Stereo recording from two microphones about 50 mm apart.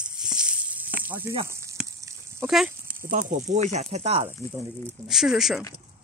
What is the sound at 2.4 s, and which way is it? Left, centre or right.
Speech, right.